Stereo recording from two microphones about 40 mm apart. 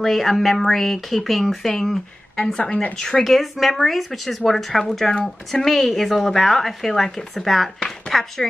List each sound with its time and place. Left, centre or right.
0.0 s speech: centre
3.3 s speech: centre